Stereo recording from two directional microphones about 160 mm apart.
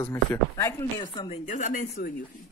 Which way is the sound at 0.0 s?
15° left (ahead or behind).